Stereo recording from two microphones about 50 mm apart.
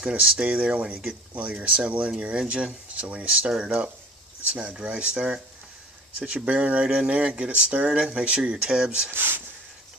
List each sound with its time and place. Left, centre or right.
0.0 s speech: right
4.8 s speech: right
9.1 s speech: right